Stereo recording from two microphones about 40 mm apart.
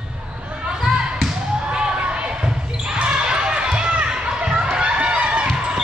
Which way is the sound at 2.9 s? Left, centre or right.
Right.